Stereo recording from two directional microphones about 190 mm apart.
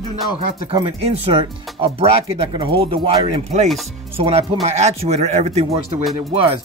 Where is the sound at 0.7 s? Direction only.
25° right (ahead or behind).